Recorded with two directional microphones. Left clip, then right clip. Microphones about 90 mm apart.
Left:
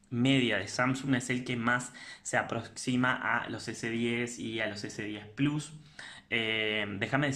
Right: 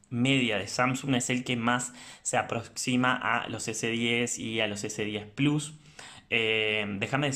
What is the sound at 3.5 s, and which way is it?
Speech, 30° right (ahead or behind).